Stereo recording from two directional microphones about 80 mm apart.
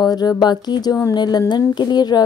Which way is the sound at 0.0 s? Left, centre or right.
Left.